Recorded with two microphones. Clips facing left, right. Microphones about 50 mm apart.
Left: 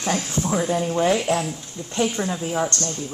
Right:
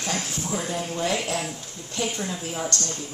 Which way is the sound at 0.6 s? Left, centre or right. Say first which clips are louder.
Left 8 dB; centre.